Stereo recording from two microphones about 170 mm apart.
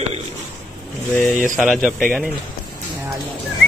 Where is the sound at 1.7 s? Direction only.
Centre (ahead or behind).